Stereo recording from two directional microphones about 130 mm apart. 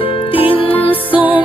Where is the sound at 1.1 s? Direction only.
10° right (ahead or behind).